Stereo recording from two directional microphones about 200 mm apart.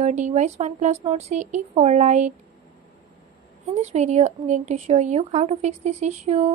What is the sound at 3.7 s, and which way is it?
Speech, 35° right (ahead or behind).